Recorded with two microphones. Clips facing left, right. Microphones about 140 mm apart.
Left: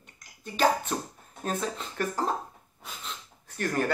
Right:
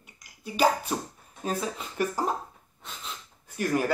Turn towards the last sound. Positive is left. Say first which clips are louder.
# right 2 dB
turn(degrees=-10)  # may be behind; listen again after turning